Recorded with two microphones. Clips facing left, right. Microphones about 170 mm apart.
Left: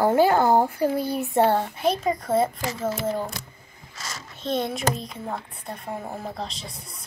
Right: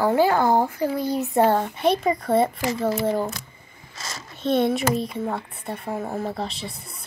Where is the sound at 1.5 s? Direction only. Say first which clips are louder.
Right 2 dB; centre (ahead or behind).